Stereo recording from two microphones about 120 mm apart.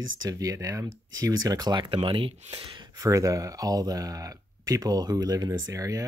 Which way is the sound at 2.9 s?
25° right (ahead or behind).